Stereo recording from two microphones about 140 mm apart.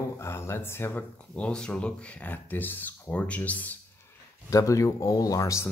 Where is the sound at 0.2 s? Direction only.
20° left (ahead or behind).